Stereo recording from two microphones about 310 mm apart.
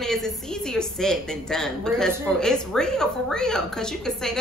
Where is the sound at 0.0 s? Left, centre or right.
Centre.